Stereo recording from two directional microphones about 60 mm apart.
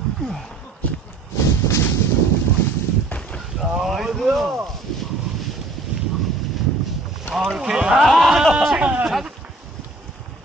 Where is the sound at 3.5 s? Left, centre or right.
Centre.